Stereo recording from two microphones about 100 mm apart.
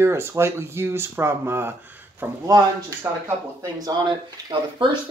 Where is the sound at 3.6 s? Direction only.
45° right (ahead or behind).